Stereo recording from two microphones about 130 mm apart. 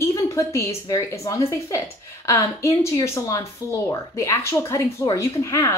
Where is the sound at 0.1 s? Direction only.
25° left (ahead or behind).